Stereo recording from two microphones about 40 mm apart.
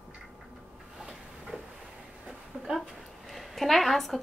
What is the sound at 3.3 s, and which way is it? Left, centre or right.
Speech, centre.